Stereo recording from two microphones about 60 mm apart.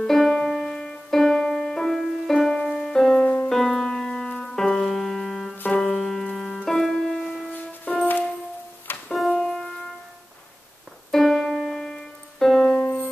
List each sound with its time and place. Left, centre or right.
0.0 s music: centre
9.1 s music: centre
11.1 s keyboard: centre
12.7 s music: left